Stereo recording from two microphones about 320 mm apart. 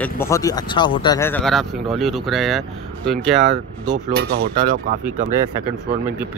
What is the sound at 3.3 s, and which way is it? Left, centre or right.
Speech, right.